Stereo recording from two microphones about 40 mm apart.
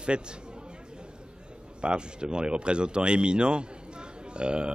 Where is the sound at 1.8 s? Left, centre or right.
Right.